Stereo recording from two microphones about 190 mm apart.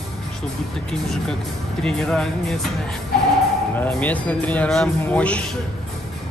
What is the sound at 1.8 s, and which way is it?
Speech, 5° left (ahead or behind).